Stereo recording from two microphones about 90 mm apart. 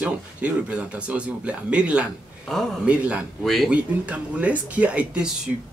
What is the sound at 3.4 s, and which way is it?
Speech, centre (ahead or behind).